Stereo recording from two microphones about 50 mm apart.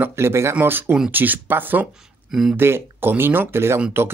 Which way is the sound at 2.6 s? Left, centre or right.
Right.